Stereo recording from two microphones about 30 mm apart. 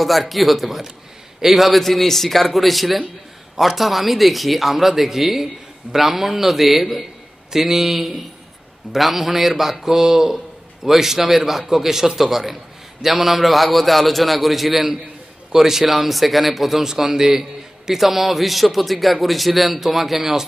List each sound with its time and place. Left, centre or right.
0.0 s speech: centre
9.8 s a man's voice: centre
16.8 s a man's voice: centre